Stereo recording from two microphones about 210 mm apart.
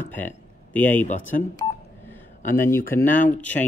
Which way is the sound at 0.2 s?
10° left (ahead or behind).